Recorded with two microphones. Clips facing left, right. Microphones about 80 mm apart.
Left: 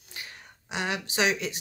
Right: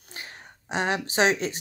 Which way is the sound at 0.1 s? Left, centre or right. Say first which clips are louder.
Right 2 dB; right.